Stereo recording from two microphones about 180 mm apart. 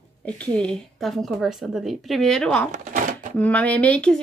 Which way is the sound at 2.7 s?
45° right (ahead or behind).